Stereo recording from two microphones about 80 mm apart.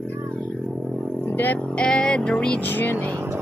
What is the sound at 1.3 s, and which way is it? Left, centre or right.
Speech, left.